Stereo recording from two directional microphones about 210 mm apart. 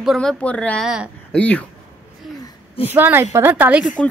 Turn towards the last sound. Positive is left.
turn(degrees=0)  # may be behind; listen again after turning